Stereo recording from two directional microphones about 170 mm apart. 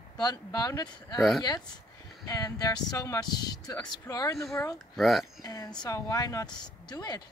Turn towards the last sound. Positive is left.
turn(degrees=25)  # may be behind; listen again after turning